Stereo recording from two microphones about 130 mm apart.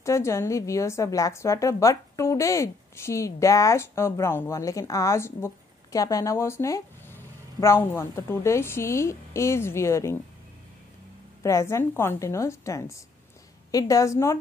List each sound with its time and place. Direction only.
0.0 s a woman's voice: 20° left (ahead or behind)
11.4 s a woman's voice: 20° left (ahead or behind)